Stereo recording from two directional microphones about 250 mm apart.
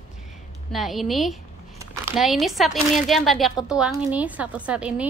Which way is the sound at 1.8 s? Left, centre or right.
Centre.